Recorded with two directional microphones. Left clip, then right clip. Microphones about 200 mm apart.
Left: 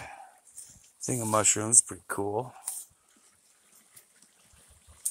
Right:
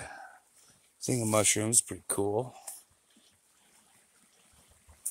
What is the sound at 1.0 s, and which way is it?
Speech, 15° right (ahead or behind).